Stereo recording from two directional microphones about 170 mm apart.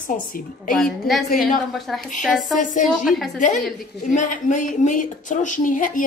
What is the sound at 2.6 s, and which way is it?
Speech, 50° left (ahead or behind).